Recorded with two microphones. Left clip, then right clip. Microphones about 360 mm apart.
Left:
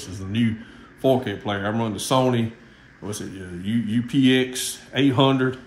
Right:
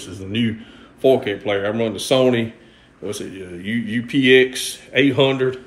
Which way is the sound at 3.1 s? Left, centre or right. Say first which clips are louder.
Right 5 dB; centre.